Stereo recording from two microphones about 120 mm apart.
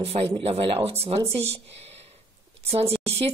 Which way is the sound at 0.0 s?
55° right (ahead or behind).